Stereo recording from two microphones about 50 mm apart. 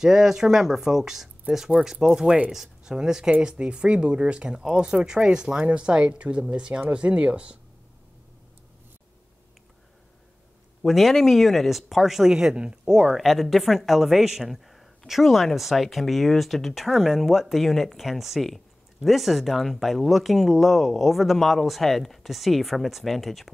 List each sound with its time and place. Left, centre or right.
0.0 s speech: centre; by 7.5 s right
10.8 s speech: centre